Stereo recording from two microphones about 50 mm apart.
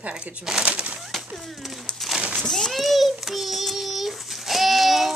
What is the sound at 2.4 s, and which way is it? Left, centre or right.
Child singing, centre.